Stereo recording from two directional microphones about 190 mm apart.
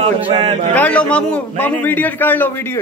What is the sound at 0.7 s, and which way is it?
Speech, 5° left (ahead or behind).